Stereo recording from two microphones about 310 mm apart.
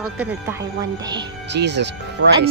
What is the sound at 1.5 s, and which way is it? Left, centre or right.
Speech, right.